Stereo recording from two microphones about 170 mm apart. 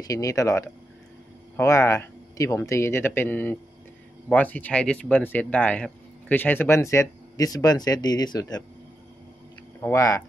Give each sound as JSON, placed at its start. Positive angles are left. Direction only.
{"t": 0.0, "sound": "speech", "side_deg": 20}
{"t": 9.8, "sound": "speech", "side_deg": 20}